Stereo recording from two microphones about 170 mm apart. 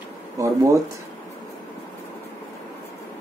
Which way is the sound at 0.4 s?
20° right (ahead or behind).